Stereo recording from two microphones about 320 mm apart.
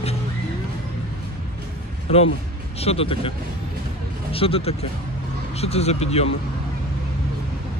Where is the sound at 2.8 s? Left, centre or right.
Centre.